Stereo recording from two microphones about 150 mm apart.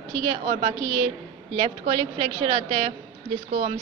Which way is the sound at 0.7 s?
25° right (ahead or behind).